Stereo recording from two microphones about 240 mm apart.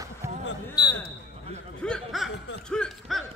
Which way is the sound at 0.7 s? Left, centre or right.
Centre.